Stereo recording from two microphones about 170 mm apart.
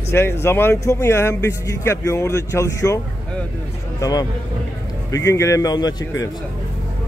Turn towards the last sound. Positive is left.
turn(degrees=20)  # may be behind; listen again after turning